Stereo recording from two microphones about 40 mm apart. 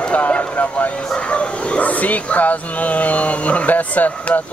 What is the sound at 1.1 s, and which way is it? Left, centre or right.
Speech, left.